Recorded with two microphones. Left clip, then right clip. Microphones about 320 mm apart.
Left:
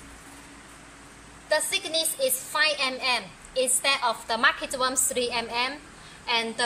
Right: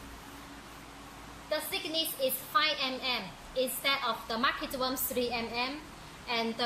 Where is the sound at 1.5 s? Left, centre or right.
Centre.